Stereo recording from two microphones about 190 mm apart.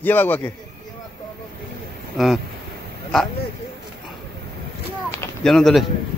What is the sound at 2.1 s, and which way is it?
Speech, centre (ahead or behind).